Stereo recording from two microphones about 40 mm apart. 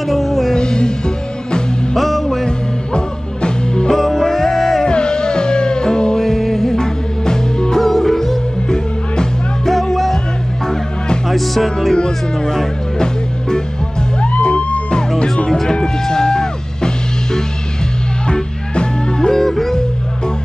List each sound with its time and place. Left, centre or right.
0.1 s music: centre
0.6 s music: centre
2.0 s music: centre
3.4 s music: left
3.9 s music: centre
4.8 s music: left
7.8 s music: centre
9.7 s music: centre
11.2 s music: centre
12.0 s music: centre
14.2 s music: left
15.0 s music: centre
19.3 s music: centre